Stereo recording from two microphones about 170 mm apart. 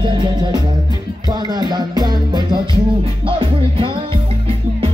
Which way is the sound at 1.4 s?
25° right (ahead or behind).